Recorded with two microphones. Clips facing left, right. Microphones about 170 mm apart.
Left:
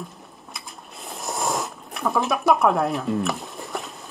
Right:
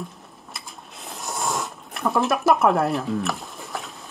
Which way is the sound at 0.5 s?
Centre (ahead or behind).